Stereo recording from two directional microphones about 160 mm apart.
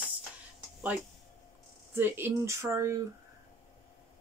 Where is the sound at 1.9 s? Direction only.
15° right (ahead or behind).